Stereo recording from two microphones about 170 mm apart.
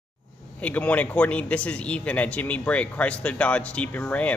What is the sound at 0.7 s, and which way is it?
A man's voice, 10° left (ahead or behind).